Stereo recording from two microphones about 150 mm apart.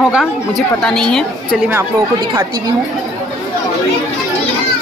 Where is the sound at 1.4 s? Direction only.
10° right (ahead or behind).